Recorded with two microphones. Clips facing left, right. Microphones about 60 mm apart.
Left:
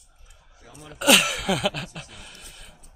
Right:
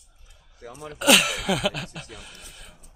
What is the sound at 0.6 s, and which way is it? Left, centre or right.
Speech, right.